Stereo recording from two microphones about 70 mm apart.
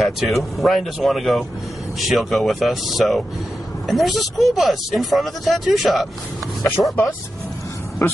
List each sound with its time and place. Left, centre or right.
0.0 s speech: centre
6.8 s speech: centre